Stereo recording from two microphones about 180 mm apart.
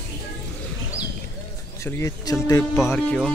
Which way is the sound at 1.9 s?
15° left (ahead or behind).